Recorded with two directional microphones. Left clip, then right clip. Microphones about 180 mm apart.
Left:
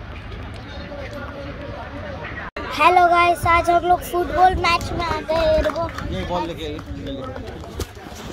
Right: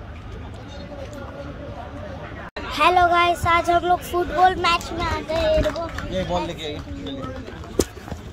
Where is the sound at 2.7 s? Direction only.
Centre (ahead or behind).